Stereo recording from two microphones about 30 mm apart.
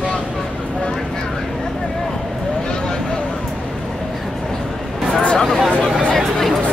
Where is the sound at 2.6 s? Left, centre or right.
Left.